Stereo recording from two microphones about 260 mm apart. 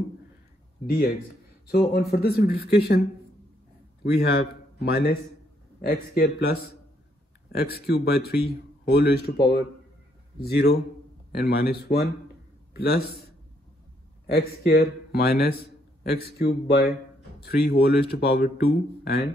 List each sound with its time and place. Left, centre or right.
0.8 s speech: left
4.0 s speech: left
7.5 s a man's voice: left
14.2 s speech: left